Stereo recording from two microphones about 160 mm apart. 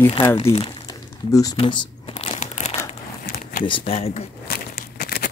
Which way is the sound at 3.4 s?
60° left (ahead or behind).